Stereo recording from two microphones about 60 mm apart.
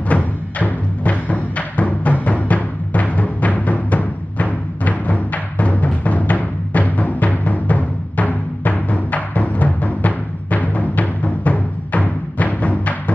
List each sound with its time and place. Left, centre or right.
0.1 s music: left